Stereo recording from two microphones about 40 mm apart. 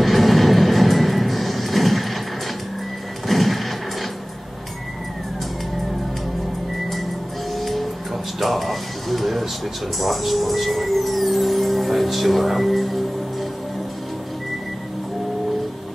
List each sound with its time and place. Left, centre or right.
0.0 s music: centre
3.3 s a sound: centre
7.6 s music: centre
9.9 s speech: centre